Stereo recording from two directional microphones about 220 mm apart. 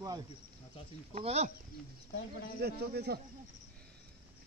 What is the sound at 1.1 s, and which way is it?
Speech, 30° right (ahead or behind).